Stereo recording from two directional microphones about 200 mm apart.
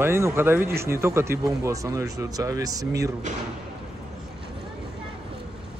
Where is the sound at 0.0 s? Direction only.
15° right (ahead or behind).